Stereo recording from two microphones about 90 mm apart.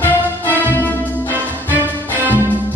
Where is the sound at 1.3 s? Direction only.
20° right (ahead or behind).